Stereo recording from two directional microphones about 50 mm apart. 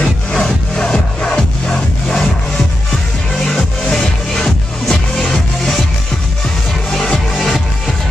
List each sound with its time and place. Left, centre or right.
0.0 s music: left
3.4 s music: centre
6.9 s music: centre
7.3 s music: centre